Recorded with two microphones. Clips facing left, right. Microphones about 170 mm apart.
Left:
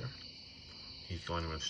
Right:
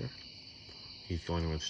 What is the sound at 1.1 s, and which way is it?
Speech, 40° right (ahead or behind).